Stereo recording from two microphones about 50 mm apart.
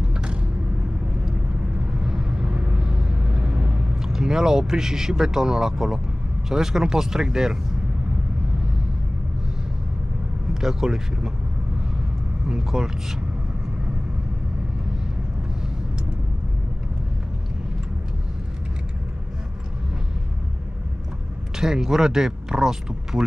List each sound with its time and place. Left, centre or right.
0.1 s vehicle: right
2.0 s vehicle: centre
6.5 s speech: centre
10.5 s speech: centre
12.4 s speech: centre
21.5 s speech: centre